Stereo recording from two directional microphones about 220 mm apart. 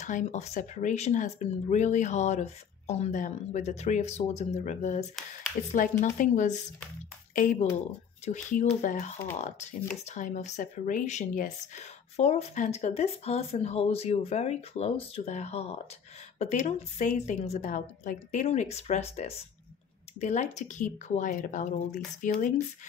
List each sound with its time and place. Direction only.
0.0 s speech: 35° left (ahead or behind)